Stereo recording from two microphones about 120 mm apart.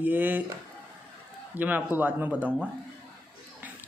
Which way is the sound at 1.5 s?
15° right (ahead or behind).